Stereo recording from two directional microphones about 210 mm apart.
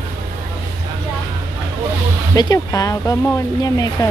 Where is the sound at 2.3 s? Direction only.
20° left (ahead or behind).